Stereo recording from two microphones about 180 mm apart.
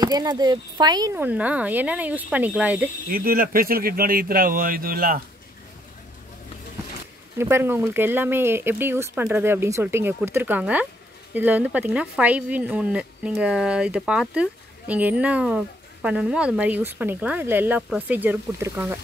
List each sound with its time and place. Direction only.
0.0 s speech: 20° right (ahead or behind)
1.1 s speech: 10° right (ahead or behind)
3.1 s speech: 55° right (ahead or behind)
7.3 s speech: 15° right (ahead or behind)